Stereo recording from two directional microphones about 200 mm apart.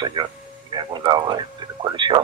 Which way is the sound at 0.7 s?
20° right (ahead or behind).